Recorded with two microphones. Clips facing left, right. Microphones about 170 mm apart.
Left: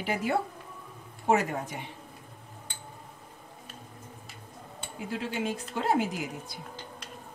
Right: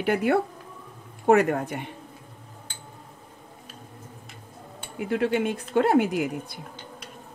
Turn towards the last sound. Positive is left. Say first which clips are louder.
# right 8 dB
turn(degrees=-60)  # may be behind; listen again after turning